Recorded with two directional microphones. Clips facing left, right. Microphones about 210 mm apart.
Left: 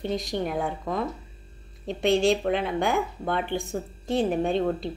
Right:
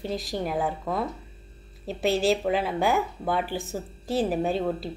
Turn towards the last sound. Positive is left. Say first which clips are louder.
# left 1 dB
turn(degrees=-5)  # may be behind; listen again after turning